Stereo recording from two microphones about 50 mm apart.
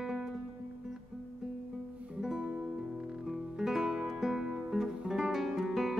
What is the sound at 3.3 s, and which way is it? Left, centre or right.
Music, centre.